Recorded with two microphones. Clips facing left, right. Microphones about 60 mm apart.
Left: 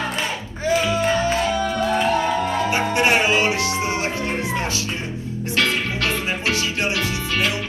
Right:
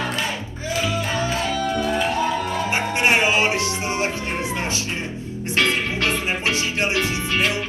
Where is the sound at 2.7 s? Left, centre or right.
Right.